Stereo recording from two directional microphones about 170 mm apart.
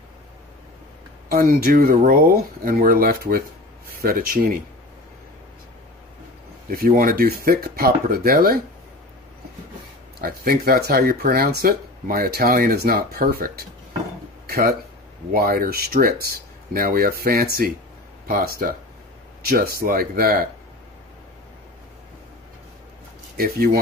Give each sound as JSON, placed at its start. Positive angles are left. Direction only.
{"t": 1.3, "sound": "speech", "side_deg": -60}
{"t": 6.7, "sound": "speech", "side_deg": -60}
{"t": 10.2, "sound": "speech", "side_deg": -60}
{"t": 14.4, "sound": "a sound", "side_deg": -65}
{"t": 15.3, "sound": "speech", "side_deg": -60}
{"t": 23.3, "sound": "speech", "side_deg": -60}